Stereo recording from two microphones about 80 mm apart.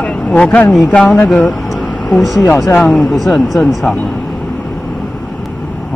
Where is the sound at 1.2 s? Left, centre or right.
Centre.